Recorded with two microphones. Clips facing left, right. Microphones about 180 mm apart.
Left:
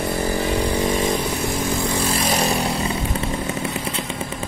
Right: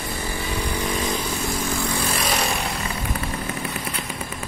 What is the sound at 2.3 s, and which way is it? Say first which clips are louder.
Vehicle: left 5 dB; 35° left (ahead or behind).